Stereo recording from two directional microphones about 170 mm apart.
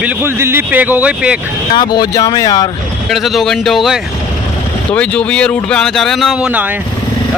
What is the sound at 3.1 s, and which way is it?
Speech, centre (ahead or behind).